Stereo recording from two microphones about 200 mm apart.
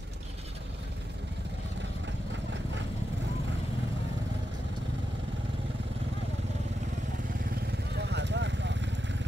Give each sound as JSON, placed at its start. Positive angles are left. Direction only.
{"t": 7.9, "sound": "vehicle", "side_deg": -60}